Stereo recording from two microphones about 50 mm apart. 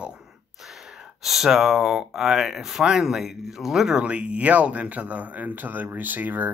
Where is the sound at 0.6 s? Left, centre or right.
Centre; by 6.5 s right.